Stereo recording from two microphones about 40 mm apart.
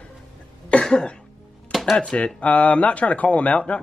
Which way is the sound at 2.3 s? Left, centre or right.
Left.